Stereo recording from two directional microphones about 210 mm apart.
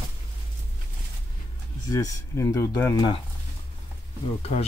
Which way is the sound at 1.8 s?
15° left (ahead or behind).